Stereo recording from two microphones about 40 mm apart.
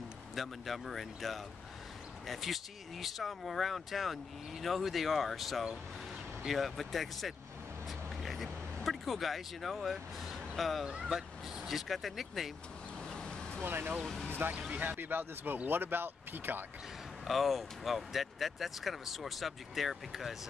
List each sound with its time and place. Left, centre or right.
0.4 s speech: centre
8.2 s vehicle: centre
8.8 s speech: centre
13.0 s vehicle: centre
13.7 s speech: right
13.9 s speech: centre
14.7 s speech: right
15.0 s speech: right
17.3 s speech: centre